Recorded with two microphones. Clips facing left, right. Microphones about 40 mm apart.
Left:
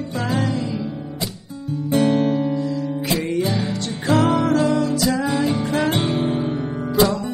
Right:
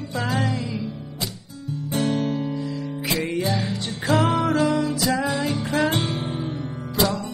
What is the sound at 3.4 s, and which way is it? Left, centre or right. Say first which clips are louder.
Music: left 2 dB; left.